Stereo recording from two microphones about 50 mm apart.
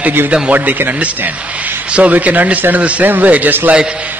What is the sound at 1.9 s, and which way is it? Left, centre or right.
A man's voice, right.